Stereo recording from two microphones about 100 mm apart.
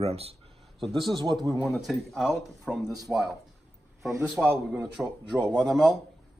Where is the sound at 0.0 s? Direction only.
90° right.